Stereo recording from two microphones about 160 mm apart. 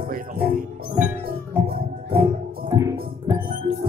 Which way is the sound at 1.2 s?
70° right (ahead or behind).